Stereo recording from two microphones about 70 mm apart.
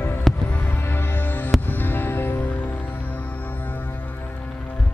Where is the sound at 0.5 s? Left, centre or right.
Left.